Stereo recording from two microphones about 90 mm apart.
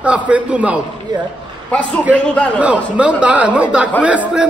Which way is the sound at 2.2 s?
10° left (ahead or behind).